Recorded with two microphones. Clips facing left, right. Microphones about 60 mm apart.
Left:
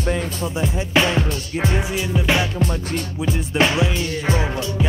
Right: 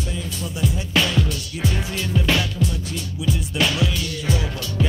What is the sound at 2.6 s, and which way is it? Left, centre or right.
Music, left.